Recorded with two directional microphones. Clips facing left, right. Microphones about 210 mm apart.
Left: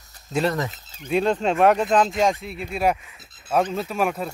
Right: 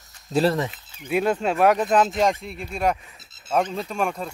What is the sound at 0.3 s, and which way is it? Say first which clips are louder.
Speech: right 3 dB; 35° right (ahead or behind).